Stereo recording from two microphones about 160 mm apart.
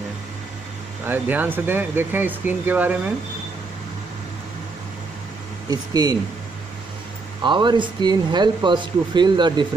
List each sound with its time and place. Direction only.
1.0 s speech: 10° right (ahead or behind)
5.7 s speech: 25° right (ahead or behind)
7.4 s speech: 30° right (ahead or behind)